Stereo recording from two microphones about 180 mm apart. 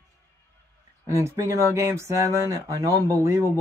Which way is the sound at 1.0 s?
15° right (ahead or behind).